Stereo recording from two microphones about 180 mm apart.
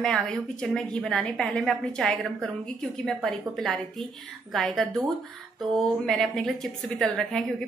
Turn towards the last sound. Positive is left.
turn(degrees=0)  # may be behind; listen again after turning